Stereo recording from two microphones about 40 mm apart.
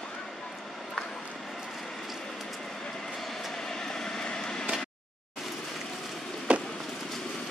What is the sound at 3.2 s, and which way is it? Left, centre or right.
Vehicle, centre.